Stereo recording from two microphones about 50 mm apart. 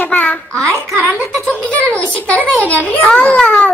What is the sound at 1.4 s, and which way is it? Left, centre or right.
A child's voice, left.